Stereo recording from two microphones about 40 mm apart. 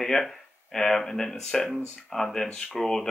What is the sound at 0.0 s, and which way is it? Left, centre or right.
Speech, centre.